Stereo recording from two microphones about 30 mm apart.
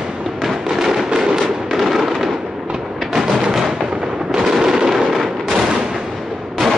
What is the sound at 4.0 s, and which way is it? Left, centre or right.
Artillery fire, centre.